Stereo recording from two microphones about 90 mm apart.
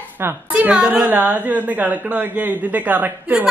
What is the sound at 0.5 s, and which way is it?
A woman's voice, 15° right (ahead or behind).